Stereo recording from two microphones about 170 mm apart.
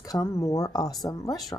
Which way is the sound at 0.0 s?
20° left (ahead or behind).